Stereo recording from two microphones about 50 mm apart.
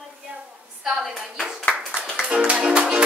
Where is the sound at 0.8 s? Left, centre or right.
Centre.